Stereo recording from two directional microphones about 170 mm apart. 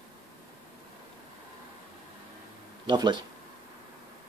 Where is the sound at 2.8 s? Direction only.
25° right (ahead or behind).